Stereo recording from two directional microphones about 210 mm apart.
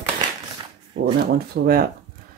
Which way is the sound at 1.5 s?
50° right (ahead or behind).